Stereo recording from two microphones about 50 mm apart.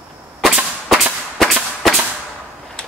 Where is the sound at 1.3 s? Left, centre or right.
Centre.